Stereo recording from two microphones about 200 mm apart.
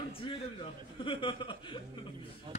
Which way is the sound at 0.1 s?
25° left (ahead or behind).